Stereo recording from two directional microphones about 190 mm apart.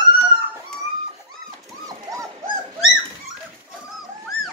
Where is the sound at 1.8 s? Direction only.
15° right (ahead or behind).